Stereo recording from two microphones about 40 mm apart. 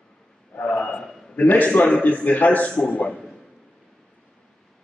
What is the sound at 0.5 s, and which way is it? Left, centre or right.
Speech, left.